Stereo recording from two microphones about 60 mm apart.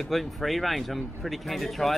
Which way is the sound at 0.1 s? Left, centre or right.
Centre.